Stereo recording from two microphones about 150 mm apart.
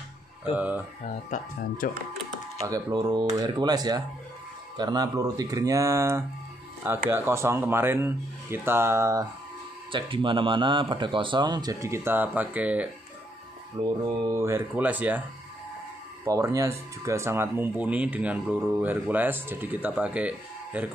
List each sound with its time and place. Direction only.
0.6 s speech: 10° right (ahead or behind)
1.0 s speech: 60° left (ahead or behind)
2.6 s speech: 25° right (ahead or behind)
9.9 s speech: 35° right (ahead or behind); by 12.9 s 10° right (ahead or behind)
13.7 s speech: 25° right (ahead or behind); by 15.2 s 10° right (ahead or behind)
16.3 s speech: 20° right (ahead or behind)